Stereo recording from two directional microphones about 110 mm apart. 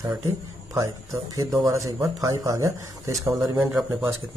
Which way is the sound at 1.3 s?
30° right (ahead or behind).